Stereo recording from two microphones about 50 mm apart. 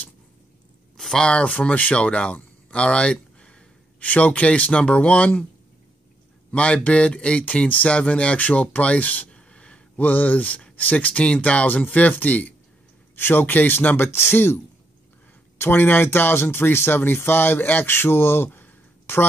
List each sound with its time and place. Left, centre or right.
0.9 s a sound: centre
1.2 s speech: left
6.5 s speech: left
13.1 s speech: left